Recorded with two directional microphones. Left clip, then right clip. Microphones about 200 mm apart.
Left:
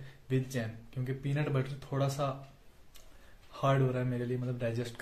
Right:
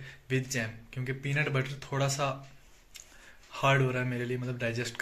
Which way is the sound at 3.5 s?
5° left (ahead or behind).